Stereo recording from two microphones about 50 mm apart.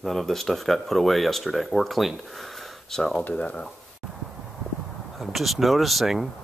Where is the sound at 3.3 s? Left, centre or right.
Left.